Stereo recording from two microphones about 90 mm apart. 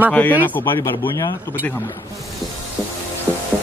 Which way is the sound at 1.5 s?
25° left (ahead or behind).